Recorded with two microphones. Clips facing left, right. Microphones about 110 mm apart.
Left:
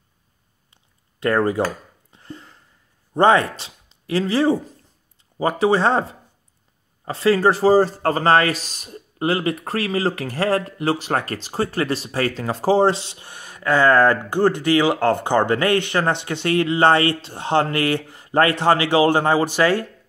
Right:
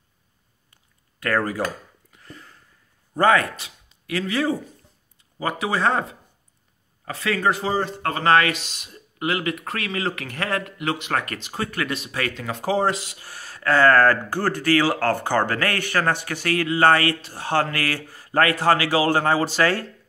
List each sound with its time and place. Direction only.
1.2 s speech: 25° left (ahead or behind)
2.1 s a sound: 30° left (ahead or behind)
3.2 s speech: 25° left (ahead or behind)